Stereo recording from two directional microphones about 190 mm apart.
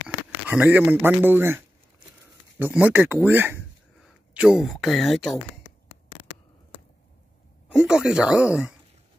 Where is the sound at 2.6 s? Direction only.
10° right (ahead or behind).